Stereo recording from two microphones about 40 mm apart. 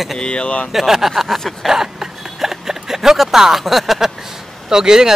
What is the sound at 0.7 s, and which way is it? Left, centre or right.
A man's voice, centre.